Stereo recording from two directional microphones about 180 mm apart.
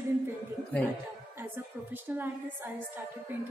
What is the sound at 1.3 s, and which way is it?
A woman's voice, 10° right (ahead or behind).